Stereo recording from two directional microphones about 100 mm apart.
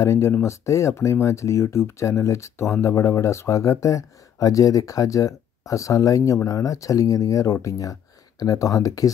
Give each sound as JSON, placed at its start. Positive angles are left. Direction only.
{"t": 0.0, "sound": "speech", "side_deg": 30}